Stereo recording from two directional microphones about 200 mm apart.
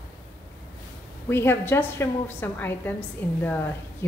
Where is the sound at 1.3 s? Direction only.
10° left (ahead or behind).